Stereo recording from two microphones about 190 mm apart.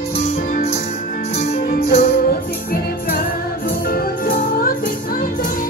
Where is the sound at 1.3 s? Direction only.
55° left (ahead or behind).